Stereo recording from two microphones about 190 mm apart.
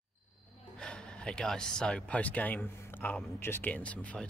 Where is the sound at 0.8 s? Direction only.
5° left (ahead or behind).